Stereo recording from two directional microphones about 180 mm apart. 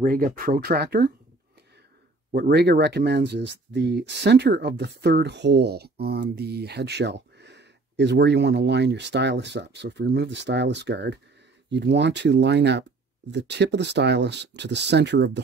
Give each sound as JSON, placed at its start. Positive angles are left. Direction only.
{"t": 0.0, "sound": "speech", "side_deg": -50}
{"t": 2.3, "sound": "speech", "side_deg": -65}